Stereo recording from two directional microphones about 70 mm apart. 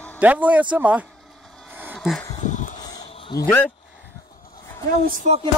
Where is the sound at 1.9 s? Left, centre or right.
Centre.